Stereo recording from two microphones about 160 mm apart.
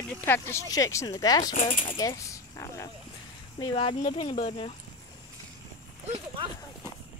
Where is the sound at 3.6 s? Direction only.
35° left (ahead or behind).